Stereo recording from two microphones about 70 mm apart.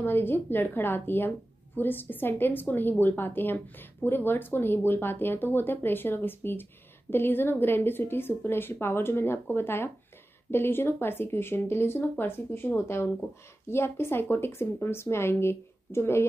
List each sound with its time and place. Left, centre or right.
0.0 s a woman's voice: left